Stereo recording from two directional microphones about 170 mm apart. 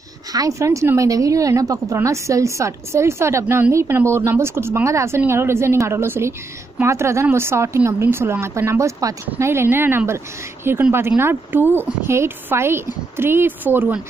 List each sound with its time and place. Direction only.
0.3 s speech: 20° right (ahead or behind)